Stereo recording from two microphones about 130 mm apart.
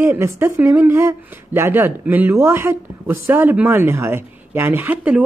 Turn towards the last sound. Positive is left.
turn(degrees=-10)  # may be behind; listen again after turning